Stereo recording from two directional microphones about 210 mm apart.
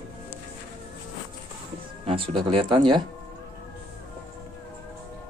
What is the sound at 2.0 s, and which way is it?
Music, 25° right (ahead or behind).